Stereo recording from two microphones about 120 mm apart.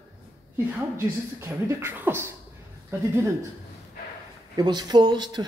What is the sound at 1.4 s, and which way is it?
Speech, 20° right (ahead or behind).